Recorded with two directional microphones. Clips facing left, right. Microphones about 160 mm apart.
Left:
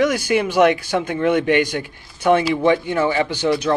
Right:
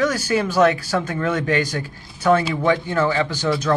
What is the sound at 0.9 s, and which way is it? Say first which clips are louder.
Speech: left 4 dB; 15° left (ahead or behind).